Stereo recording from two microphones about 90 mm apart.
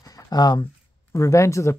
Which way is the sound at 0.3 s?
50° left (ahead or behind).